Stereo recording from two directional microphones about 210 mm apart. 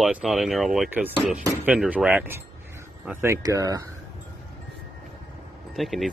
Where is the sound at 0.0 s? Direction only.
Centre (ahead or behind).